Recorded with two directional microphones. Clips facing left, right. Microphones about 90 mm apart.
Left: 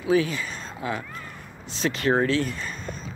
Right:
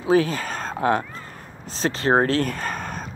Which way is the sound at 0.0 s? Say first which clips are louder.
Right 3 dB; 40° right (ahead or behind).